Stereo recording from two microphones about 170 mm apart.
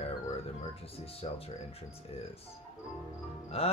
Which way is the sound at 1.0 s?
35° left (ahead or behind).